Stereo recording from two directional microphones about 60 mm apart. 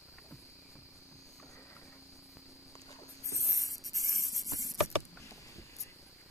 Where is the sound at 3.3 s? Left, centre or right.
Left.